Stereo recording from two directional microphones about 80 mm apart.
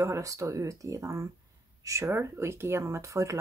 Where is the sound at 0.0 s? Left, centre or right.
Right.